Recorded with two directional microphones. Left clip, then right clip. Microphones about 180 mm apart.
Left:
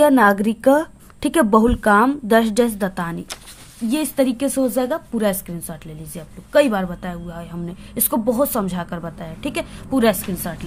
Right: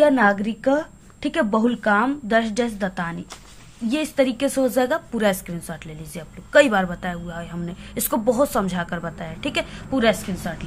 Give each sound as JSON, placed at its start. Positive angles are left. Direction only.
{"t": 0.0, "sound": "a woman's voice", "side_deg": 45}